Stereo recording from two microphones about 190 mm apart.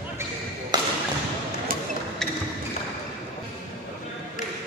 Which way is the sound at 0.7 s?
20° right (ahead or behind).